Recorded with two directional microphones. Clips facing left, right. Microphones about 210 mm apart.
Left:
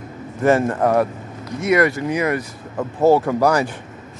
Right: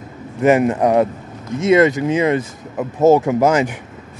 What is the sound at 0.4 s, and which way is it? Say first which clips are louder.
Speech: right 3 dB; 20° right (ahead or behind).